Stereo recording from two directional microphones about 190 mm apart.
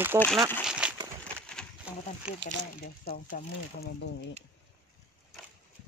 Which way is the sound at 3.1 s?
50° left (ahead or behind).